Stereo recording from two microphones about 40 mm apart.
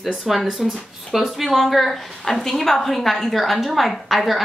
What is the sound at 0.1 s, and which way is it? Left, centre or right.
A woman's voice, centre.